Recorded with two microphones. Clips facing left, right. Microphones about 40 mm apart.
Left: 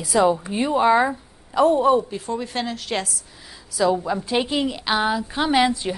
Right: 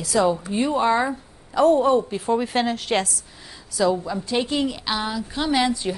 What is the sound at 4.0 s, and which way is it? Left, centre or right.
A woman's voice, centre.